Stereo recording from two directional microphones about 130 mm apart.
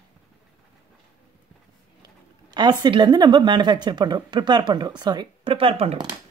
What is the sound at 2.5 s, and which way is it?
Speech, 30° right (ahead or behind).